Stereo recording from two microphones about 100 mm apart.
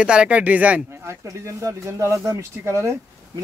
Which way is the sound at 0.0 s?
10° right (ahead or behind).